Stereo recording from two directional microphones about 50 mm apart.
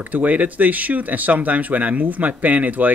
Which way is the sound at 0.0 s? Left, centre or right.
Right.